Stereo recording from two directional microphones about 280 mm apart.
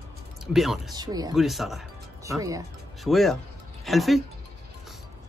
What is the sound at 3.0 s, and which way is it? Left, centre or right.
Speech, centre.